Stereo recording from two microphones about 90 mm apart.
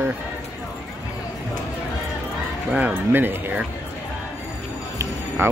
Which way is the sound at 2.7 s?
20° right (ahead or behind).